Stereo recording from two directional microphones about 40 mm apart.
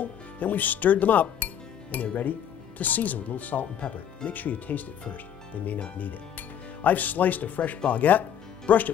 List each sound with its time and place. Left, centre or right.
0.0 s speech: left